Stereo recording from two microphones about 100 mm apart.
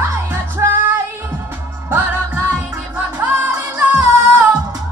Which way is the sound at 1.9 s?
20° right (ahead or behind).